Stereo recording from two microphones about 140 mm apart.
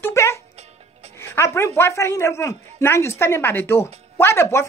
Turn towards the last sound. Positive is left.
turn(degrees=20)  # may be behind; listen again after turning